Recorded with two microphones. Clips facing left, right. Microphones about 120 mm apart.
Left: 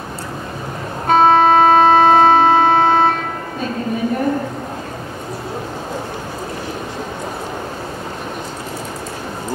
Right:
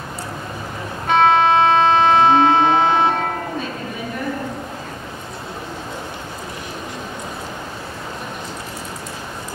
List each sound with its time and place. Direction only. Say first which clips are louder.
1.0 s music: left 3 dB; 40° left (ahead or behind)